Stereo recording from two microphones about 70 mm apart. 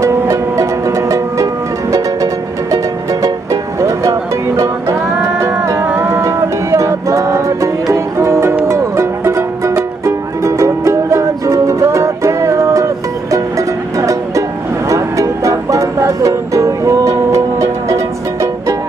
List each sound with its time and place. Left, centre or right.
0.0 s music: right
5.4 s music: right
5.9 s music: right
6.2 s music: right